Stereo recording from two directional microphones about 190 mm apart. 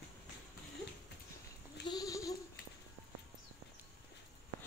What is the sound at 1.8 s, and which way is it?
Goat, 20° left (ahead or behind).